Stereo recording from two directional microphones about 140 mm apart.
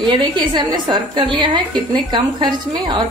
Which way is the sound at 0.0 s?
30° right (ahead or behind).